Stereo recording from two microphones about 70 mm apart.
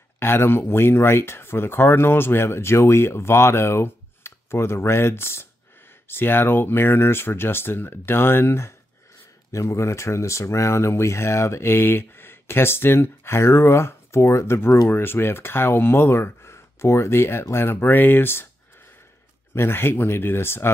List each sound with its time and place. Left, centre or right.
0.2 s speech: left
19.5 s speech: left